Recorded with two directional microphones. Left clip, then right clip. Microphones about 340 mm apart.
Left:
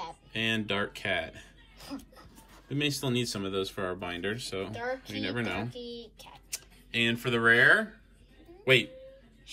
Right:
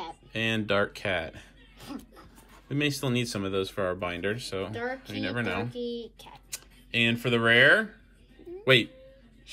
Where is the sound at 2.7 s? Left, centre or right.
Centre.